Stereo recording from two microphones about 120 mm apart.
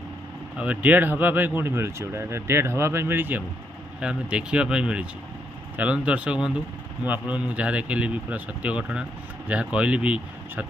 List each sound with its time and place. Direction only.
0.6 s speech: 15° right (ahead or behind)